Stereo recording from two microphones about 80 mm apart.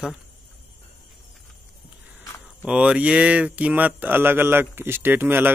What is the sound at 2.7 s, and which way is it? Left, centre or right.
Speech, centre.